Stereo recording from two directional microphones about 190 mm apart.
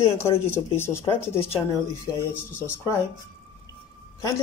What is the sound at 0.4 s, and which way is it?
Speech, 15° left (ahead or behind).